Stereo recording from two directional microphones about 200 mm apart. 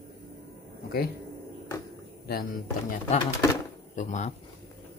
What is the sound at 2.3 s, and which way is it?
Speech, 50° left (ahead or behind).